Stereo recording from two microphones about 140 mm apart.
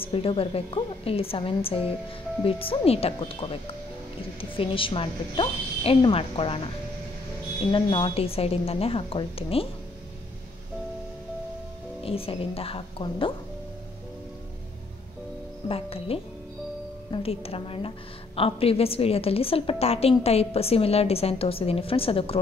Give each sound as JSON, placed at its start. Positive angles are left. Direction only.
{"t": 0.0, "sound": "a woman's voice", "side_deg": 40}
{"t": 7.7, "sound": "a woman's voice", "side_deg": 40}
{"t": 12.0, "sound": "a woman's voice", "side_deg": 40}
{"t": 15.7, "sound": "a woman's voice", "side_deg": 45}